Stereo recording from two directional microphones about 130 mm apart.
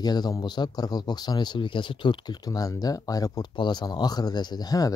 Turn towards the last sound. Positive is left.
turn(degrees=30)  # may be behind; listen again after turning